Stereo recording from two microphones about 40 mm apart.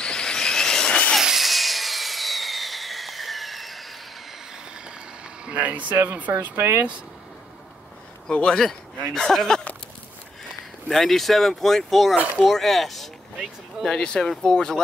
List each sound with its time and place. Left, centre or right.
0.0 s vehicle: left
1.2 s sawing: centre
5.4 s speech: right
6.5 s speech: right
8.3 s speech: centre
10.9 s speech: centre
13.8 s speech: centre